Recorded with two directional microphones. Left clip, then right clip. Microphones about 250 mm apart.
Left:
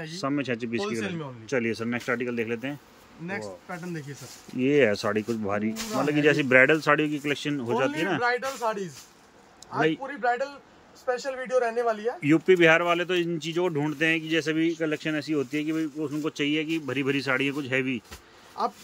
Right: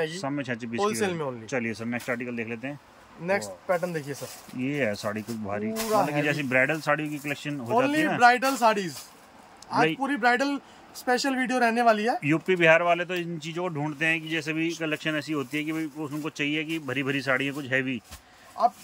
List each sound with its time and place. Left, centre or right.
0.1 s speech: centre
0.8 s speech: right
1.5 s speech: centre
3.6 s speech: right
4.6 s speech: centre
8.2 s a man's voice: right
12.2 s a man's voice: centre